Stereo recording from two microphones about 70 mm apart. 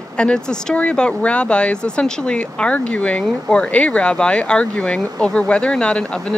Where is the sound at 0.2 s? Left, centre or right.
Centre.